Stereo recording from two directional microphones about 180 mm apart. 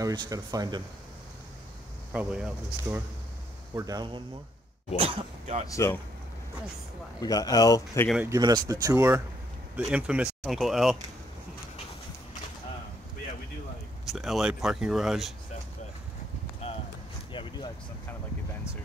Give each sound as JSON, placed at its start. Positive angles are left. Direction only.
{"t": 0.0, "sound": "speech", "side_deg": -20}
{"t": 2.1, "sound": "speech", "side_deg": -5}
{"t": 3.7, "sound": "speech", "side_deg": -20}
{"t": 5.7, "sound": "speech", "side_deg": 15}
{"t": 7.2, "sound": "speech", "side_deg": 20}
{"t": 8.3, "sound": "speech", "side_deg": -20}
{"t": 14.0, "sound": "speech", "side_deg": 0}
{"t": 16.6, "sound": "a sound", "side_deg": 30}
{"t": 17.3, "sound": "vehicle", "side_deg": 25}